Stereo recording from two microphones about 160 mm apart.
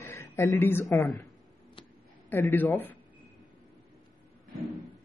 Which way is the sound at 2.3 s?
15° left (ahead or behind).